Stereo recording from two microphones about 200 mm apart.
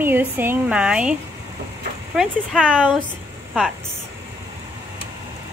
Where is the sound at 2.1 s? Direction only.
Centre (ahead or behind).